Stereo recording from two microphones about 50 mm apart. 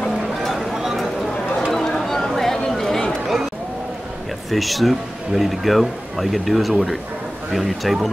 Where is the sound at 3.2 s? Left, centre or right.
Centre.